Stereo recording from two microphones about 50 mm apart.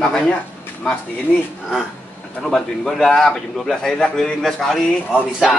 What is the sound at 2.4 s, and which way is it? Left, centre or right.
A man's voice, centre.